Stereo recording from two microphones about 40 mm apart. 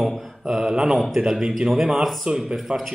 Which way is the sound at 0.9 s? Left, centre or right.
Centre.